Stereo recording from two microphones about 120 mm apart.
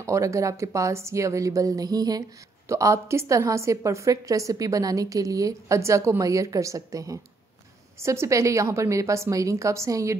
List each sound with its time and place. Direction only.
0.0 s a woman's voice: 25° right (ahead or behind)